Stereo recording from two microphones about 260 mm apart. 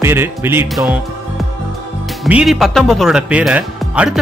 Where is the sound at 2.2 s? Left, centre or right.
Centre.